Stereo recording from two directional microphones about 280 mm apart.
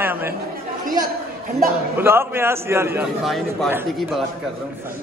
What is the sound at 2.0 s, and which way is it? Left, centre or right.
A man's voice, centre.